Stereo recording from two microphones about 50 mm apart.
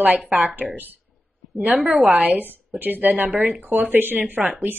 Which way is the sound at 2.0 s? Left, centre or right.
Right.